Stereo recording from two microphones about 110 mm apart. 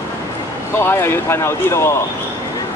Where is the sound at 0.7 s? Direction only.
20° left (ahead or behind).